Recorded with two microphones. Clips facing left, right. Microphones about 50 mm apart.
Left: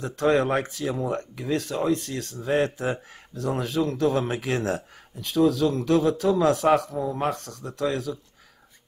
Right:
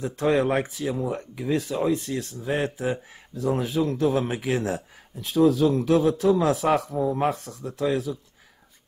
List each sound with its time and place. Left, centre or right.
0.0 s speech: centre
5.5 s speech: centre
5.8 s speech: centre